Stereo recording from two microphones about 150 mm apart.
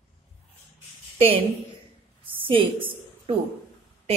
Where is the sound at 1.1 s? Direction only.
40° right (ahead or behind).